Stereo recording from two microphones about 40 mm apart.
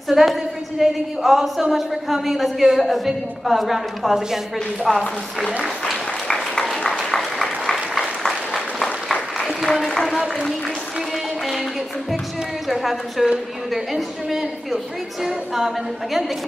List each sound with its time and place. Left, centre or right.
0.1 s a woman's voice: centre
4.9 s a woman's voice: centre
6.2 s applause: centre
8.8 s applause: left
12.6 s a woman's voice: centre